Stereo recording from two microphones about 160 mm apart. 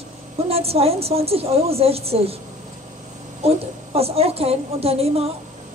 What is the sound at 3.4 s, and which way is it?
A woman's voice, 40° right (ahead or behind).